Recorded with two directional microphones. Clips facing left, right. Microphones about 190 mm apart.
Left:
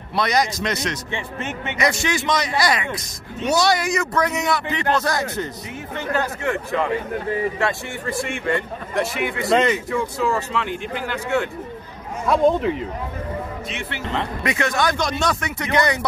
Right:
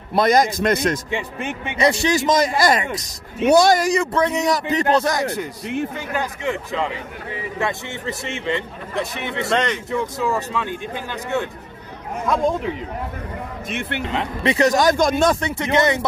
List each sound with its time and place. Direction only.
0.1 s speech: 45° right (ahead or behind)
1.1 s speech: 15° right (ahead or behind)
1.8 s speech: 35° right (ahead or behind)
3.9 s a man's voice: 30° right (ahead or behind)
5.9 s a man's voice: 15° right (ahead or behind)
9.5 s speech: 5° left (ahead or behind)
9.8 s speech: 20° right (ahead or behind)
12.3 s speech: centre (ahead or behind)
13.7 s speech: 55° right (ahead or behind)
14.4 s a man's voice: 35° right (ahead or behind)
15.4 s a man's voice: 25° right (ahead or behind)